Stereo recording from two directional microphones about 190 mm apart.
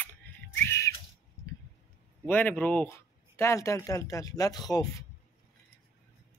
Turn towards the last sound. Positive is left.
turn(degrees=20)  # may be behind; listen again after turning